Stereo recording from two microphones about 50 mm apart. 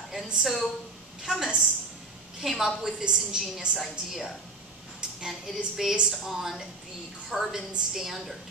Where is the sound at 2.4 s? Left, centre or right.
Centre.